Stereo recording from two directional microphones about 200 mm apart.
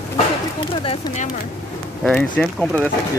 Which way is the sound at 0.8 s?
30° left (ahead or behind).